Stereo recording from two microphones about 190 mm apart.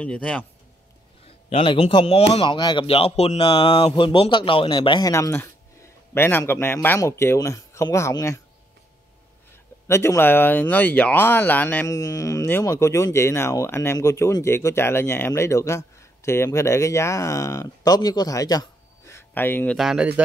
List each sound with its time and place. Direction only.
0.0 s speech: 5° left (ahead or behind)
1.2 s speech: 30° left (ahead or behind)
9.8 s speech: 15° left (ahead or behind); by 20.2 s 5° right (ahead or behind)